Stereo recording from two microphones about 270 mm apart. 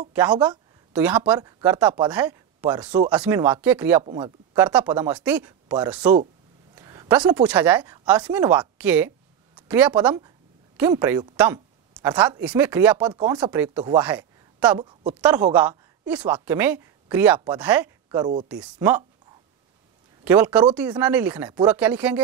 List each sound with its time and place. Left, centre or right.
0.1 s speech: centre
4.6 s a woman's voice: centre
20.2 s speech: centre